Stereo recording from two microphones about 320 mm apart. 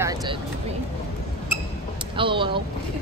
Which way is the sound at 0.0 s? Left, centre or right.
Centre.